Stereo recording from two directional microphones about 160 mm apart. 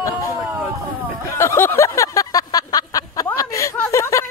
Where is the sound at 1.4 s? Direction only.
15° left (ahead or behind).